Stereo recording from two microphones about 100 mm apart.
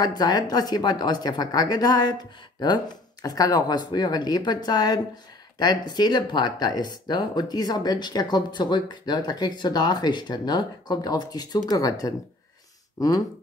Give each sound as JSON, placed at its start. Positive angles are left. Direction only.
{"t": 0.0, "sound": "speech", "side_deg": 40}